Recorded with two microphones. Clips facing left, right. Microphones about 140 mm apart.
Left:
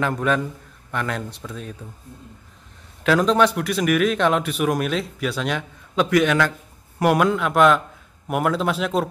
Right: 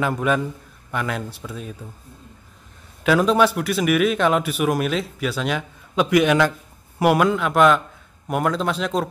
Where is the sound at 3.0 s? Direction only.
5° right (ahead or behind).